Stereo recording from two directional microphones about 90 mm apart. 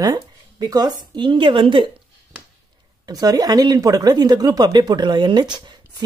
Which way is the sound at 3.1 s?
45° right (ahead or behind).